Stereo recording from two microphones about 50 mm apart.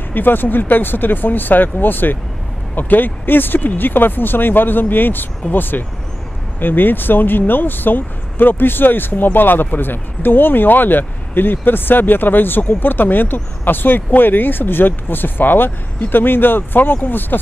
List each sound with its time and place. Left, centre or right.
0.1 s speech: left